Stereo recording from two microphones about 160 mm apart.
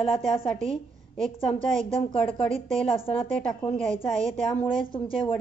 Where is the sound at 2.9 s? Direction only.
35° left (ahead or behind).